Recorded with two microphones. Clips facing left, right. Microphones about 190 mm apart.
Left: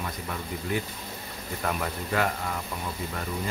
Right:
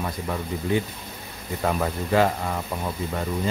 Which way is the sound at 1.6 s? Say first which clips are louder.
Right 6 dB; 30° right (ahead or behind).